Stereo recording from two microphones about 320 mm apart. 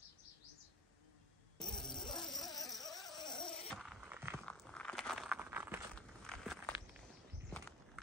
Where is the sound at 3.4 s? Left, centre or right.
Centre.